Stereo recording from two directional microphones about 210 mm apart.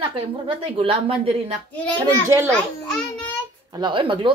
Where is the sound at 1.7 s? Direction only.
5° left (ahead or behind).